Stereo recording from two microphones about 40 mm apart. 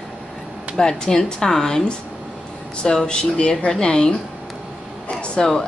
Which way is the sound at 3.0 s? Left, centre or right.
Left.